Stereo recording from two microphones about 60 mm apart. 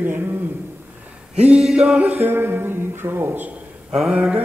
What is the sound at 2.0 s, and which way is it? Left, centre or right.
Speech, right.